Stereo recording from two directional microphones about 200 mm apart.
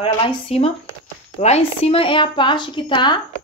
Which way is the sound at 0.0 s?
30° left (ahead or behind).